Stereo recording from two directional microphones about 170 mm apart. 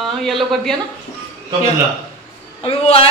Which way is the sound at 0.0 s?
Centre (ahead or behind).